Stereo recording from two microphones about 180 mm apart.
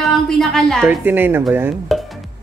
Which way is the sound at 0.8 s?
10° right (ahead or behind).